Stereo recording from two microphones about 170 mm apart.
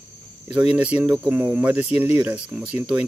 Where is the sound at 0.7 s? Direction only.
10° right (ahead or behind).